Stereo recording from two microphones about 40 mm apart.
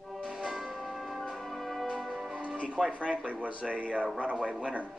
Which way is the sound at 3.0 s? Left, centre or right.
Right.